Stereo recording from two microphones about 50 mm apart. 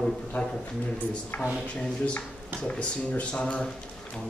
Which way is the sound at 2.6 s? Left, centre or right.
Left.